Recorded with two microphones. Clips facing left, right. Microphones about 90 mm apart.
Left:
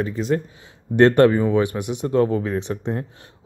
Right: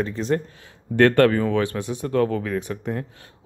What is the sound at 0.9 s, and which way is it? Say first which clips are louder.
Speech: left 2 dB; 20° left (ahead or behind).